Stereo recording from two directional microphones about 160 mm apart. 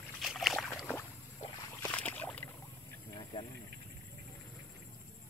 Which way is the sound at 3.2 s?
30° left (ahead or behind).